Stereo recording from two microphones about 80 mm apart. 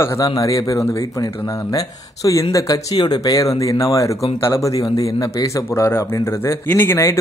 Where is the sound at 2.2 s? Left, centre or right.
Left.